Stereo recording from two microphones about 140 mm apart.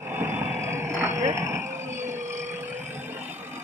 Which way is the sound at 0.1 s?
10° right (ahead or behind).